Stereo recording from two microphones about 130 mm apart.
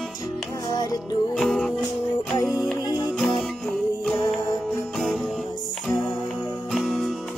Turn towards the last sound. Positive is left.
turn(degrees=0)  # may be behind; listen again after turning